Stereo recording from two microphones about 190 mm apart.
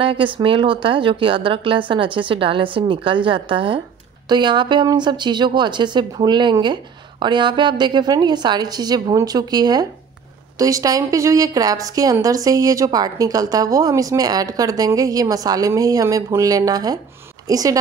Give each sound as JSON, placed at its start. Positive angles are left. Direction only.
{"t": 0.0, "sound": "a woman's voice", "side_deg": -25}